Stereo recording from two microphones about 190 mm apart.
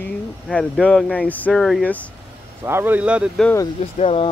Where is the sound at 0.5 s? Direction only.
5° left (ahead or behind).